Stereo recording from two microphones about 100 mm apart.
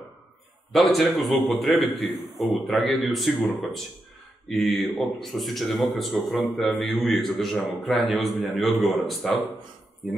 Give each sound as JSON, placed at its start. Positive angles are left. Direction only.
{"t": 0.7, "sound": "a man's voice", "side_deg": 0}